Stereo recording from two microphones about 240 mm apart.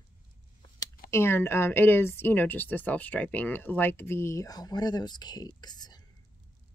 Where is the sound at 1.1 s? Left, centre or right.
Centre.